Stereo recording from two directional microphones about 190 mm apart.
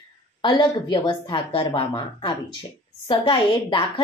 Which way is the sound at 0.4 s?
25° left (ahead or behind).